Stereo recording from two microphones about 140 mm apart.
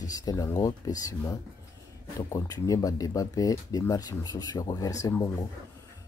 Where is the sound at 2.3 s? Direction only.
25° left (ahead or behind).